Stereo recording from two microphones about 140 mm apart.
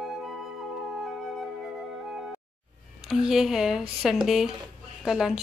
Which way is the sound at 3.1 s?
5° right (ahead or behind).